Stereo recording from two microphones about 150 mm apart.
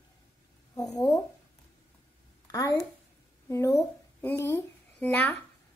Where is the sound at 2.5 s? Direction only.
20° left (ahead or behind).